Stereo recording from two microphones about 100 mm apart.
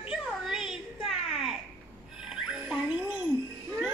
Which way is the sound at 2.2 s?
10° right (ahead or behind).